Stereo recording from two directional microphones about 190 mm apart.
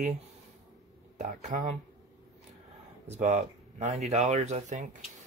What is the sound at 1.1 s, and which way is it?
Speech, 40° right (ahead or behind).